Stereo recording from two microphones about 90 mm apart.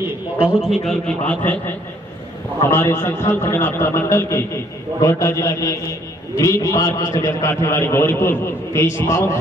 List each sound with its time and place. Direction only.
0.6 s a man's voice: 5° right (ahead or behind)
1.0 s a man's voice: 15° left (ahead or behind)
2.6 s a man's voice: 30° left (ahead or behind)